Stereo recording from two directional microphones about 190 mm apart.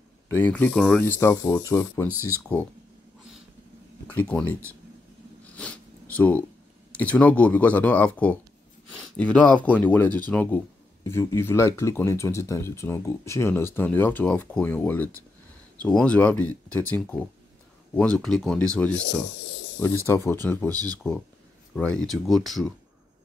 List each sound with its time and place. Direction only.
0.3 s speech: 10° left (ahead or behind)
4.1 s speech: 10° left (ahead or behind)
5.6 s zipper: 5° left (ahead or behind)
6.9 s speech: 5° left (ahead or behind)
20.7 s speech: 20° right (ahead or behind)
21.7 s speech: 5° left (ahead or behind)